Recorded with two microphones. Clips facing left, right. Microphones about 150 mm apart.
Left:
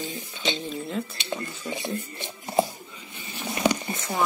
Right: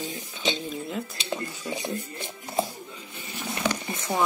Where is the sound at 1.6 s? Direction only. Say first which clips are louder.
Even; 15° right (ahead or behind).